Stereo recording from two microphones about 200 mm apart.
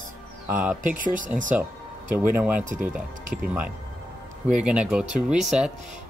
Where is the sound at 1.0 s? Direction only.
40° right (ahead or behind).